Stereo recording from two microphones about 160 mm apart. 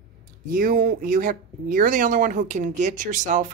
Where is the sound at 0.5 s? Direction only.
60° right (ahead or behind).